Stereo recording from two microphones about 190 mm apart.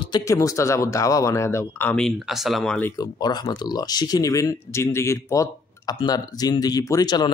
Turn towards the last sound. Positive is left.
turn(degrees=20)  # may be behind; listen again after turning